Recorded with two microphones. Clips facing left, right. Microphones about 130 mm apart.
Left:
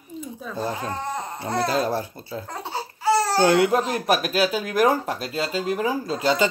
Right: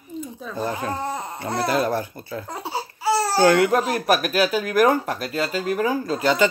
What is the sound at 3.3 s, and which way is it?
Speech, 25° left (ahead or behind).